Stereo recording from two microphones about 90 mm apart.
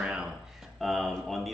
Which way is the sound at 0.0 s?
10° right (ahead or behind).